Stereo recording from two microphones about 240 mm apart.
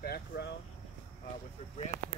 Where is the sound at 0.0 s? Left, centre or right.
Left.